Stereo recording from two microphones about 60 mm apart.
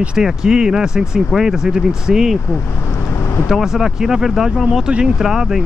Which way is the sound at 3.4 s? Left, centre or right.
Centre.